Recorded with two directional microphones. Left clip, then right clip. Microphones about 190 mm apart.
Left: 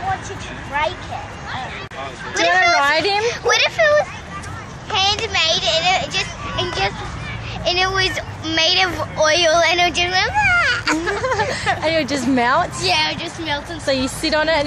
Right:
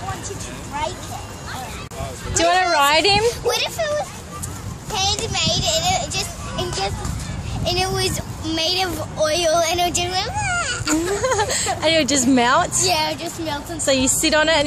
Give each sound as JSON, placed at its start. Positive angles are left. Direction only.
{"t": 0.7, "sound": "speech", "side_deg": -5}
{"t": 2.8, "sound": "vehicle", "side_deg": -40}
{"t": 3.3, "sound": "a child's voice", "side_deg": -15}
{"t": 11.1, "sound": "a woman's voice", "side_deg": -40}
{"t": 12.8, "sound": "a woman's voice", "side_deg": -55}
{"t": 14.0, "sound": "a woman's voice", "side_deg": -35}